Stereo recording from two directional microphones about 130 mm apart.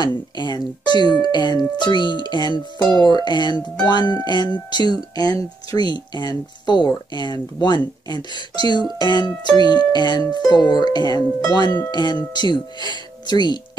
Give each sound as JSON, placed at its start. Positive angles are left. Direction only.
{"t": 0.0, "sound": "speech", "side_deg": 35}